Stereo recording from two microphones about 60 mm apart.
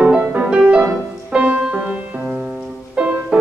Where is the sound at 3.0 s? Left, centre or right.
Right.